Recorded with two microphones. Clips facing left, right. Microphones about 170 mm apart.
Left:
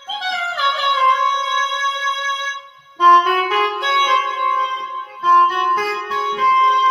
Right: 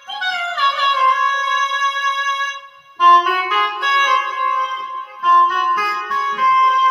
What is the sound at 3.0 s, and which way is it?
Music, 30° left (ahead or behind).